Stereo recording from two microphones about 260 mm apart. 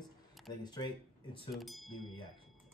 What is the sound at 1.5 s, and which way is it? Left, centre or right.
Speech, centre.